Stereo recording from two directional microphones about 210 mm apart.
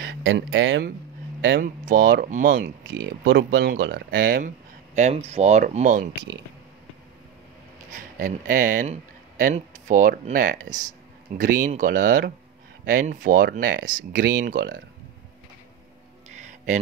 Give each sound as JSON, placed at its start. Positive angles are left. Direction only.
{"t": 0.0, "sound": "speech", "side_deg": -60}
{"t": 1.6, "sound": "speech", "side_deg": -40}
{"t": 4.9, "sound": "speech", "side_deg": -30}
{"t": 7.9, "sound": "speech", "side_deg": -40}
{"t": 16.4, "sound": "a sound", "side_deg": -35}